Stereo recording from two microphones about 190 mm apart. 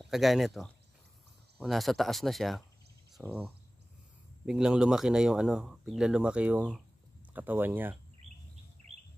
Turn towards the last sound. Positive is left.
turn(degrees=-10)  # may be behind; listen again after turning